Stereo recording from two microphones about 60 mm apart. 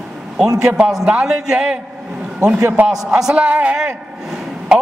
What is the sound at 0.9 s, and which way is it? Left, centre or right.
Speech, centre.